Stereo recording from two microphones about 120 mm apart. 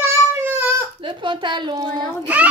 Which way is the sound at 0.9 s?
45° right (ahead or behind).